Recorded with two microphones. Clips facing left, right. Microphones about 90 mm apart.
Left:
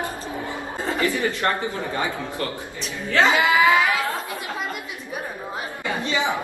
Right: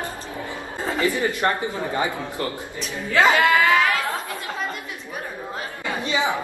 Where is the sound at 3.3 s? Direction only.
5° left (ahead or behind).